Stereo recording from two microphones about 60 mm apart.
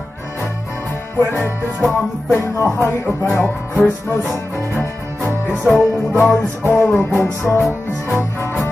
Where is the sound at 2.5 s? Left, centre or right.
Left.